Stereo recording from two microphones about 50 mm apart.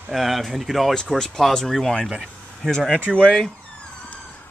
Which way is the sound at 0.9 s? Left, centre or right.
Centre.